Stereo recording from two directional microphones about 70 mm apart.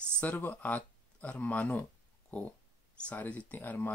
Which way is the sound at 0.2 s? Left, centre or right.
Left.